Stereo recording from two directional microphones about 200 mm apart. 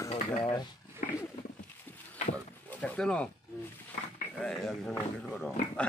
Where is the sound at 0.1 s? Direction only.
25° left (ahead or behind).